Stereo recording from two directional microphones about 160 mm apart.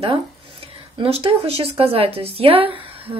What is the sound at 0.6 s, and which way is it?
Speech, 35° right (ahead or behind).